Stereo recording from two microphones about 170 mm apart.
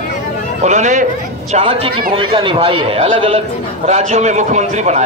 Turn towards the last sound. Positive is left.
turn(degrees=-45)  # may be behind; listen again after turning